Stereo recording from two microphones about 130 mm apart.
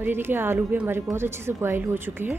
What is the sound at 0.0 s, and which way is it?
A woman's voice, 15° right (ahead or behind).